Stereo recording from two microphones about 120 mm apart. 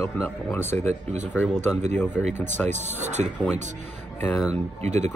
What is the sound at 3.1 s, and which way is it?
Speech, 80° right.